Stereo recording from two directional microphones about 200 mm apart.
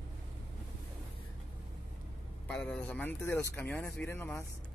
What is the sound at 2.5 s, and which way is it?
Speech, 5° left (ahead or behind).